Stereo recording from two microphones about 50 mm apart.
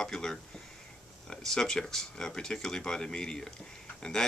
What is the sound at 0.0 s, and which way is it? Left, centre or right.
Speech, centre.